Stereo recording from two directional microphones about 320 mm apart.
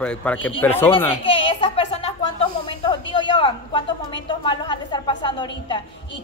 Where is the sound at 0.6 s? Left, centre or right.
Centre.